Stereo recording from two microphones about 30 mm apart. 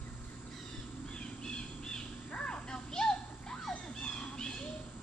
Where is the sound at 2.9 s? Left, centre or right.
Left.